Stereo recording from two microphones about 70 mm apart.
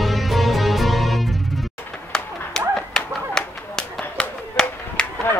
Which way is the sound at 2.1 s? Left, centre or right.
Centre.